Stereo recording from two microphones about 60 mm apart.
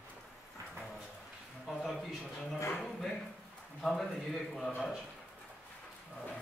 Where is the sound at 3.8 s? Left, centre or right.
Centre.